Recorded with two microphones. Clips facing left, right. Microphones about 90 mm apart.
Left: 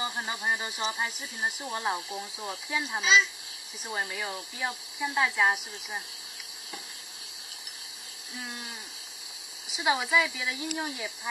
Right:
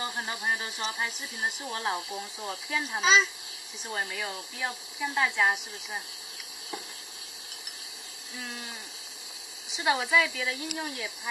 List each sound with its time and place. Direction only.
0.0 s speech: 10° left (ahead or behind)
3.0 s speech: 35° right (ahead or behind)
3.8 s speech: 5° left (ahead or behind)
8.4 s speech: centre (ahead or behind)